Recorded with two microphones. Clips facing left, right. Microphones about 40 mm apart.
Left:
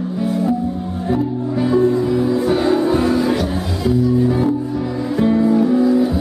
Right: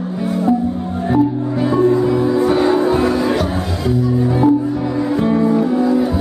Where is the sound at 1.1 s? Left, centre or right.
Centre.